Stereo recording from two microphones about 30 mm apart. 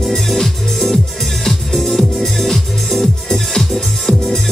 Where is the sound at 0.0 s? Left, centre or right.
Centre.